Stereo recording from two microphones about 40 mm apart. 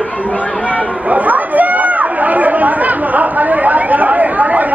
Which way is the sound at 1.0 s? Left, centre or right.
Right.